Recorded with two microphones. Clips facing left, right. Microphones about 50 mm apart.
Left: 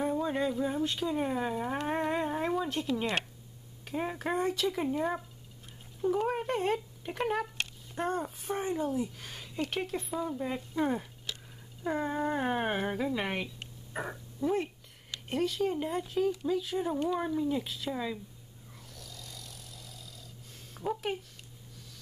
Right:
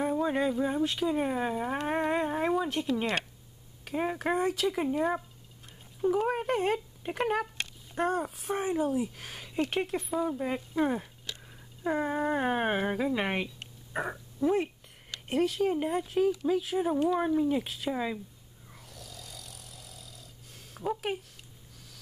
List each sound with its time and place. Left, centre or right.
0.0 s speech: centre
18.9 s vehicle: centre
20.7 s speech: centre